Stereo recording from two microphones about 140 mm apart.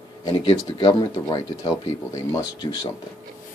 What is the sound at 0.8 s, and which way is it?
Speech, 30° left (ahead or behind).